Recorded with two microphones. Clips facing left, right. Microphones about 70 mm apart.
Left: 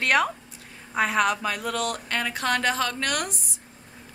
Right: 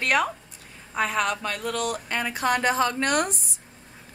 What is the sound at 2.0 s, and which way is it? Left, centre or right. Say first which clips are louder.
A woman's voice: right 1 dB; centre.